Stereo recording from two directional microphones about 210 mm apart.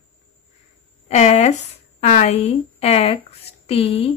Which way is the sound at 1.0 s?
30° left (ahead or behind).